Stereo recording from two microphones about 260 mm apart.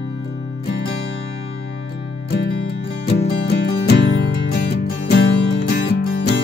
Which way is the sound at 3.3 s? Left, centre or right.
Left.